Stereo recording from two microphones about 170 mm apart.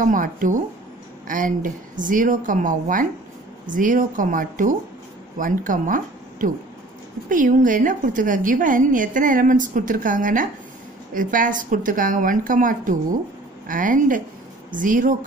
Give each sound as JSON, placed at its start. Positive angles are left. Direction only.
{"t": 0.0, "sound": "a woman's voice", "side_deg": -50}